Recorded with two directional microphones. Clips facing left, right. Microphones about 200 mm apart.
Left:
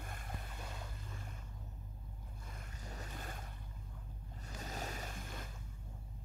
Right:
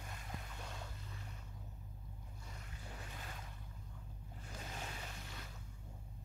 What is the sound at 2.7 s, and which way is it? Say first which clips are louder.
Boat: left 3 dB; 40° left (ahead or behind).